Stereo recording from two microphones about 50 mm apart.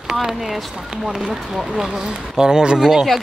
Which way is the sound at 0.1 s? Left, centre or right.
Centre.